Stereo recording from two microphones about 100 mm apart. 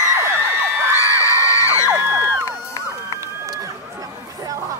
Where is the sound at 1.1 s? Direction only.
30° left (ahead or behind).